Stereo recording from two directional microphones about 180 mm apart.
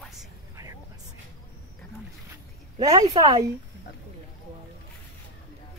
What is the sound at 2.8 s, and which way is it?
Speech, 20° right (ahead or behind).